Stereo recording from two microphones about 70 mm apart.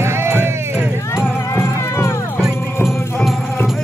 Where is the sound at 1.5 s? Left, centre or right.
Left.